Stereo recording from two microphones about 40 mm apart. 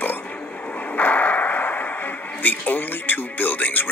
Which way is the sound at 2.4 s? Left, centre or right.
Left.